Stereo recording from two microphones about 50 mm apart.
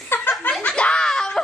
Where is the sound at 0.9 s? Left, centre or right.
Centre.